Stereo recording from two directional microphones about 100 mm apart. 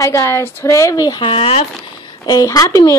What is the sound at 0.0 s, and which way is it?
Speech, 30° left (ahead or behind).